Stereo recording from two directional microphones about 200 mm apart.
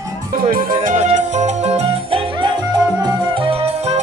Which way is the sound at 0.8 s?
35° right (ahead or behind).